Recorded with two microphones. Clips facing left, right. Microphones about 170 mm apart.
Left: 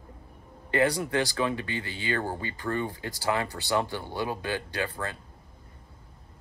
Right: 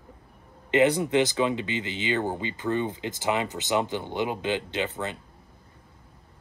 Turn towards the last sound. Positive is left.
turn(degrees=-20)  # may be behind; listen again after turning